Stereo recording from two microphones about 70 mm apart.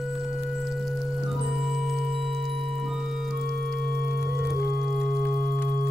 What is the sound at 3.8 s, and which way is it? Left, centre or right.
Singing bowl, centre.